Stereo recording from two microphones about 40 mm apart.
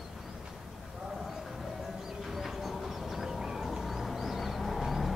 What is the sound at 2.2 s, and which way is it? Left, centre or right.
Vehicle, centre.